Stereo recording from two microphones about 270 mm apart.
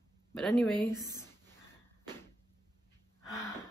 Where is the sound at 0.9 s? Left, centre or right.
Centre.